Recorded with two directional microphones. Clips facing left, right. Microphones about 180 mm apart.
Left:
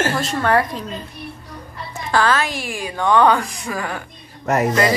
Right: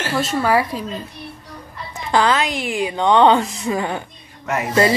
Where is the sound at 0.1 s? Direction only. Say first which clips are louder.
Right 1 dB; 5° right (ahead or behind).